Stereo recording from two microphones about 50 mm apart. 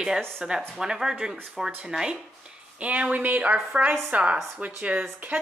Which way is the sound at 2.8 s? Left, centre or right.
Right.